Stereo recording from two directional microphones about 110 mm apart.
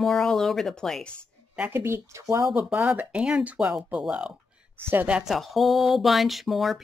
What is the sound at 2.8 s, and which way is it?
Speech, 10° right (ahead or behind).